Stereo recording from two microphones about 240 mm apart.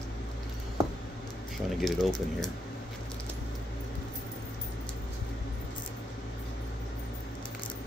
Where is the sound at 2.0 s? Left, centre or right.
Centre.